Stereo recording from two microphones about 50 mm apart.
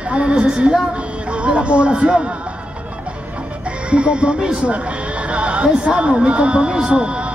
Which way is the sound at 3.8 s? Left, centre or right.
Right.